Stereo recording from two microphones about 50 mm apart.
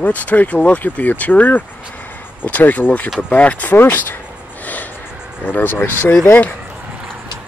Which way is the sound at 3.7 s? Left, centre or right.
Left.